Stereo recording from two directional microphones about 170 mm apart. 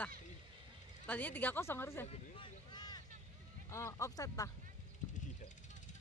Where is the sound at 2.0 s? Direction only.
30° left (ahead or behind).